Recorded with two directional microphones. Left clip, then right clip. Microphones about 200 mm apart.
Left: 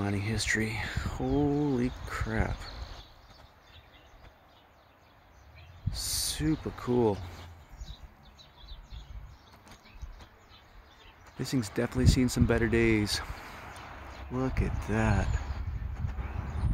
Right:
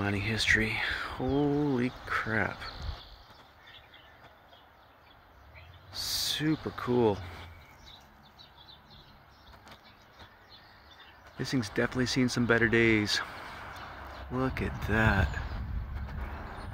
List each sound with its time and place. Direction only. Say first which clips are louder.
0.0 s speech: right 3 dB; 15° left (ahead or behind)
5.9 s owl: right 2 dB; 15° left (ahead or behind)
6.8 s speech: right 1 dB; 10° left (ahead or behind)
11.3 s speech: right 1 dB; 15° left (ahead or behind)
14.4 s speech: right 1 dB; 10° left (ahead or behind)